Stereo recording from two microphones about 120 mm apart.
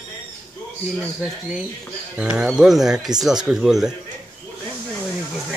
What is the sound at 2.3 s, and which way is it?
Speech, 5° right (ahead or behind).